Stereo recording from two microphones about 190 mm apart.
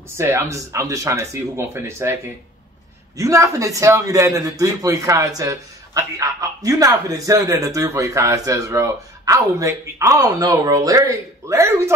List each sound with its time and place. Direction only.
0.2 s a man's voice: 15° right (ahead or behind)
3.2 s a man's voice: 15° right (ahead or behind)